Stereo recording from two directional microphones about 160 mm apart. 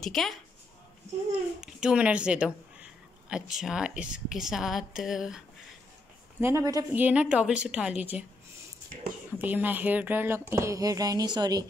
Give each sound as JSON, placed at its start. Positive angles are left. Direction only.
{"t": 0.0, "sound": "a woman's voice", "side_deg": 0}
{"t": 1.6, "sound": "a woman's voice", "side_deg": -5}
{"t": 6.4, "sound": "speech", "side_deg": -20}
{"t": 6.9, "sound": "a woman's voice", "side_deg": -10}
{"t": 9.4, "sound": "a woman's voice", "side_deg": -10}